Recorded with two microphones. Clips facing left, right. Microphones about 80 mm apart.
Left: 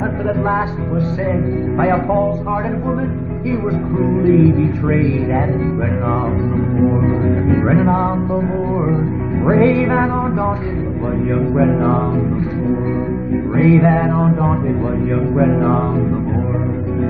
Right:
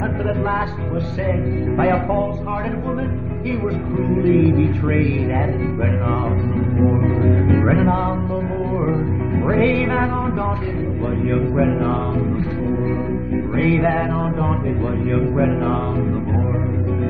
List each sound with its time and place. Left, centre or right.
4.2 s speech: left
6.8 s music: centre
9.5 s speech: left
13.6 s speech: left
13.8 s music: centre
15.1 s music: centre